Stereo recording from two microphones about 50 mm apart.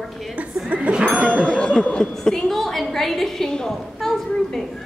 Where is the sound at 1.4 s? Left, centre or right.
Centre.